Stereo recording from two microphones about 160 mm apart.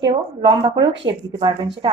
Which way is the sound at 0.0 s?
30° right (ahead or behind).